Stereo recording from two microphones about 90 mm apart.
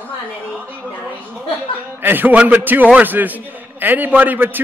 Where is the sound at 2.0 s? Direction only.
20° right (ahead or behind).